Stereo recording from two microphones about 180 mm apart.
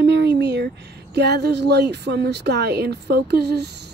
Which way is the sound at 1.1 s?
65° right (ahead or behind).